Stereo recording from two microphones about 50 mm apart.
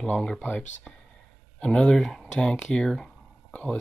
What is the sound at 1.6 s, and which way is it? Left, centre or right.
Speech, centre.